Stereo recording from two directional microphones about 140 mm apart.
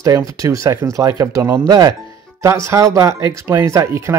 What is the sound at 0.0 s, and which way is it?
Speech, 25° right (ahead or behind).